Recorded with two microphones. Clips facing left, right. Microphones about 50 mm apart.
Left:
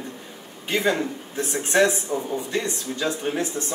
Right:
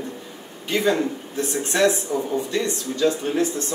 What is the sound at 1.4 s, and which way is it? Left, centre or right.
Speech, left.